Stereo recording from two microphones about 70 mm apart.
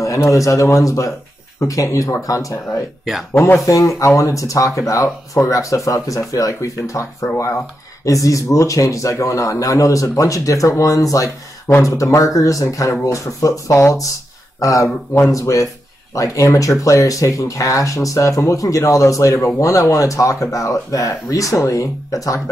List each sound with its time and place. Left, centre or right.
0.0 s speech: left
3.6 s speech: left